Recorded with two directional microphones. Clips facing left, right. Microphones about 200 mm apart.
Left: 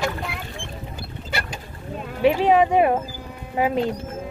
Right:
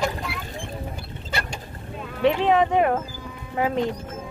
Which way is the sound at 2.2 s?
10° left (ahead or behind).